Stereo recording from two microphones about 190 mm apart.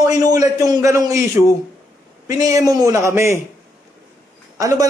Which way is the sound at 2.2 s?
20° right (ahead or behind).